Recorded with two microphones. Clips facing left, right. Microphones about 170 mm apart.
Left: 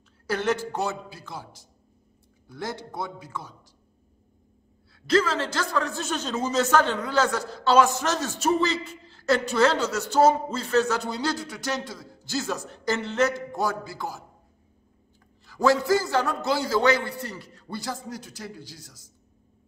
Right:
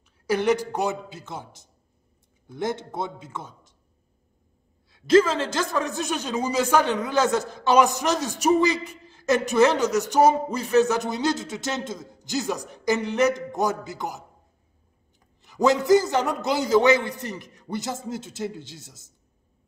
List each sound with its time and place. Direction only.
0.3 s a man's voice: 15° right (ahead or behind)
5.0 s a man's voice: 20° right (ahead or behind)
15.4 s a man's voice: 20° right (ahead or behind)